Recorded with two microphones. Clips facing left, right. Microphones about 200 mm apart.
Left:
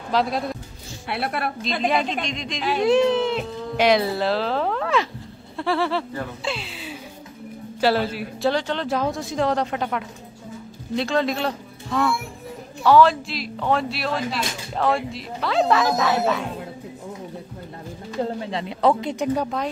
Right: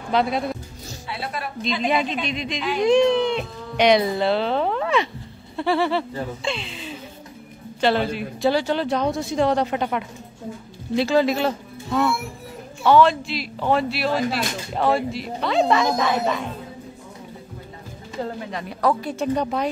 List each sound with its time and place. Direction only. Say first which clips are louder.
0.1 s speech: right 1 dB; centre (ahead or behind)
1.0 s speech: left 5 dB; 65° left (ahead or behind)
1.9 s speech: even; centre (ahead or behind)
18.4 s speech: left 1 dB; 25° left (ahead or behind); by 19.5 s 10° left (ahead or behind)